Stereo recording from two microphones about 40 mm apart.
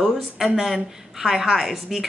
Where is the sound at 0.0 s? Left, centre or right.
Centre.